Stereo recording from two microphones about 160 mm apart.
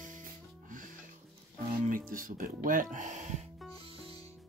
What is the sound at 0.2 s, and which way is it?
Music, 55° right (ahead or behind).